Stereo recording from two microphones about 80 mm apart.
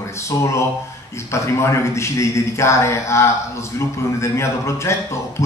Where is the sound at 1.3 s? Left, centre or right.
Left.